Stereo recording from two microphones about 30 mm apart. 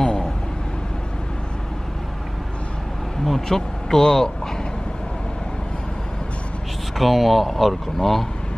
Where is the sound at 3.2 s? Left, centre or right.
Centre.